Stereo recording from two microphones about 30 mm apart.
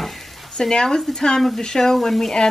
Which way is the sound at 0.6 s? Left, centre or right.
Left.